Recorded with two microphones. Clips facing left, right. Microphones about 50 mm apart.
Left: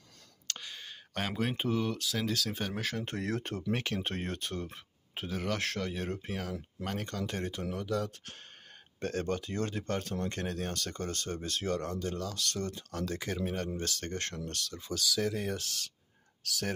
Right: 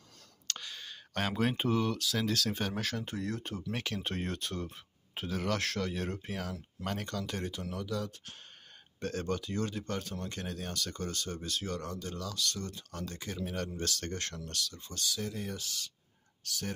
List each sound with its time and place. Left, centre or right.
0.5 s whispering: centre
1.1 s speech: centre
3.2 s speech: left
3.7 s speech: left; by 7.1 s centre
7.1 s speech: left
9.0 s speech: left
13.0 s speech: left
13.7 s speech: left
14.7 s speech: left
15.4 s speech: left
16.4 s speech: left